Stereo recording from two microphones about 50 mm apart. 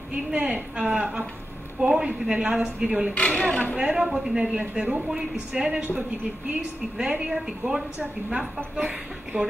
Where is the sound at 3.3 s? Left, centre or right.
Centre.